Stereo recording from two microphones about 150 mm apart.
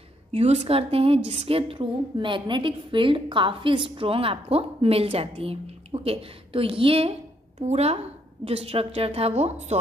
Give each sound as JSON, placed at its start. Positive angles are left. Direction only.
{"t": 0.3, "sound": "a woman's voice", "side_deg": -45}